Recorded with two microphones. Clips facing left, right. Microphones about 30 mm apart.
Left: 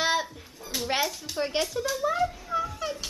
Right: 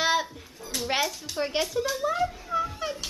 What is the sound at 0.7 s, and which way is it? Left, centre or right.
A child's voice, centre.